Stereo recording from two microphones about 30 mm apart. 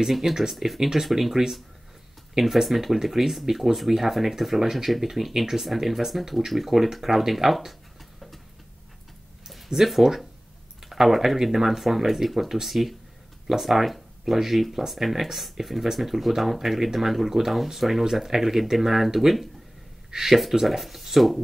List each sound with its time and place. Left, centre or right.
0.4 s speech: centre
9.7 s speech: right
10.9 s speech: centre